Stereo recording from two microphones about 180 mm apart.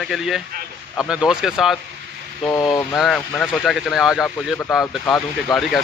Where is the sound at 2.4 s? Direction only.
20° left (ahead or behind).